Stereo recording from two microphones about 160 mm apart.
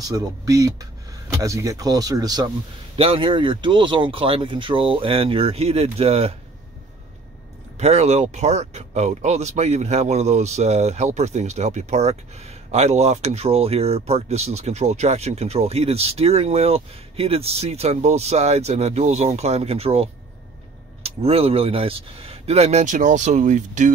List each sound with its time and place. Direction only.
0.0 s speech: 25° right (ahead or behind); by 6.3 s 40° right (ahead or behind)
7.7 s speech: 45° right (ahead or behind)